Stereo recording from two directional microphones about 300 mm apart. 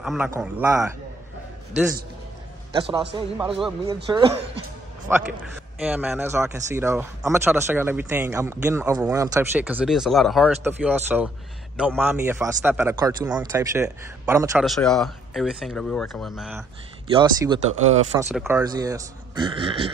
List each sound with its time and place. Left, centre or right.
0.0 s speech: centre
2.7 s speech: centre
14.8 s speech: centre
17.1 s speech: centre